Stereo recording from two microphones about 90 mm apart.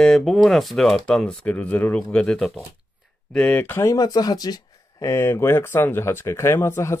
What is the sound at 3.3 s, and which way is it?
Speech, 15° left (ahead or behind).